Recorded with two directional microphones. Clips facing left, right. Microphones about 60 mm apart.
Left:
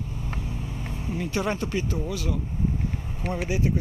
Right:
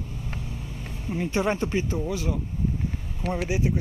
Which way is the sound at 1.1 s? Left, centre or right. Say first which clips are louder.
Right 3 dB; centre.